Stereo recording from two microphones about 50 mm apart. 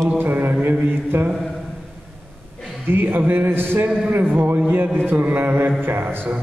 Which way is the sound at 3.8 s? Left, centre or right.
Right.